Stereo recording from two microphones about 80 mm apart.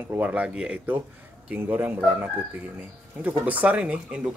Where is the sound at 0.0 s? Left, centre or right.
Right.